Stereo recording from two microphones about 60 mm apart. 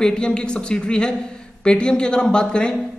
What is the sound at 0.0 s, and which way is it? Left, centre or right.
Speech, centre.